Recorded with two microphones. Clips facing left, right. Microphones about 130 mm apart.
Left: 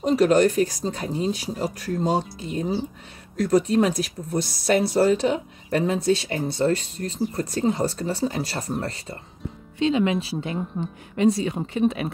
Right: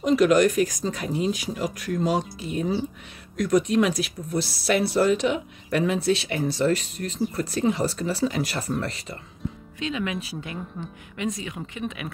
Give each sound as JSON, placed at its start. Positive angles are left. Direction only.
{"t": 0.0, "sound": "speech", "side_deg": 35}